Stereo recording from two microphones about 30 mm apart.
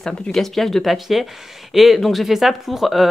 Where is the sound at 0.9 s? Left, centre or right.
Centre.